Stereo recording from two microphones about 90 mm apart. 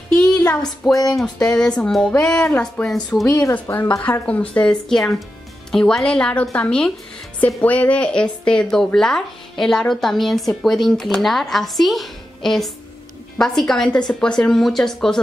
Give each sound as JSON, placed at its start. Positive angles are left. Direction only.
{"t": 0.1, "sound": "a sound", "side_deg": 10}
{"t": 1.1, "sound": "speech", "side_deg": 5}
{"t": 2.9, "sound": "speech", "side_deg": 0}
{"t": 3.3, "sound": "a woman's voice", "side_deg": 30}